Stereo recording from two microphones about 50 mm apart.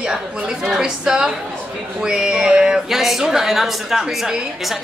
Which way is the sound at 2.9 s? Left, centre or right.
Centre.